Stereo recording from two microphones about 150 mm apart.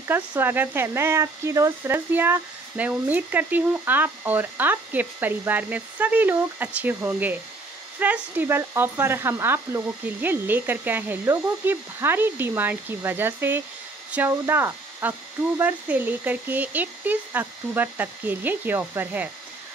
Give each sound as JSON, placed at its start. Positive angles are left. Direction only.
{"t": 0.1, "sound": "speech", "side_deg": -15}